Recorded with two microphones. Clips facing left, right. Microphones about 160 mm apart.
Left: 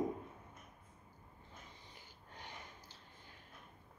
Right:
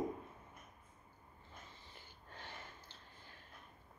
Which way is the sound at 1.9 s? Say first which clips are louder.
Even; 15° left (ahead or behind).